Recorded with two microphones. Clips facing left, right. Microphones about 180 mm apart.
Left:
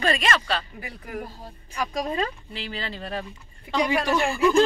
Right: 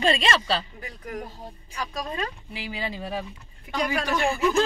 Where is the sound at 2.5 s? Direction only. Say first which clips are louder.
Right 1 dB; 10° right (ahead or behind).